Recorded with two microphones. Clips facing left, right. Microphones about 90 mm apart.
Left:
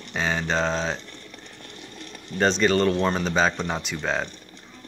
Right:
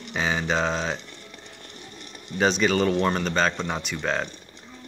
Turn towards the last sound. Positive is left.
turn(degrees=0)  # may be behind; listen again after turning